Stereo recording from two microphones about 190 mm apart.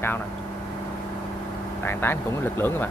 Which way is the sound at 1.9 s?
10° left (ahead or behind).